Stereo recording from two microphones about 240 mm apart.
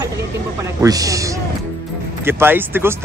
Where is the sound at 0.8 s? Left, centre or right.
Centre.